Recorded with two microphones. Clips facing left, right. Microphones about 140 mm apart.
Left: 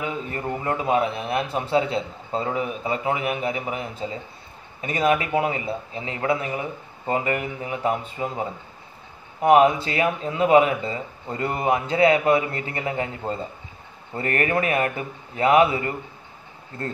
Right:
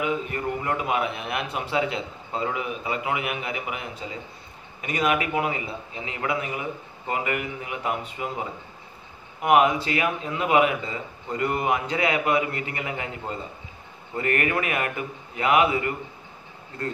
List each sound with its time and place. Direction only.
0.0 s speech: 30° left (ahead or behind)
9.4 s speech: 30° left (ahead or behind)